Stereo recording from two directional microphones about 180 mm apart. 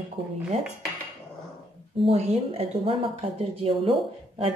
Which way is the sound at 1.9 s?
35° right (ahead or behind).